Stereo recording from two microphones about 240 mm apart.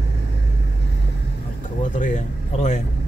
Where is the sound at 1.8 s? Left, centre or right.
Left.